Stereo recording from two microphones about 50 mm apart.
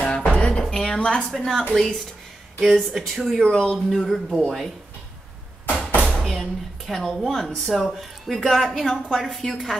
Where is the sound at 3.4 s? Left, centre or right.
Centre.